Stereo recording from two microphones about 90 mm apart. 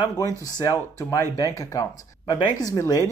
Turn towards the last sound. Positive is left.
turn(degrees=35)  # may be behind; listen again after turning